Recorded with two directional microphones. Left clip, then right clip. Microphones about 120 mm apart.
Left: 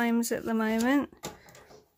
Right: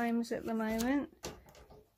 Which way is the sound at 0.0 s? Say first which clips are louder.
Left 7 dB; 45° left (ahead or behind).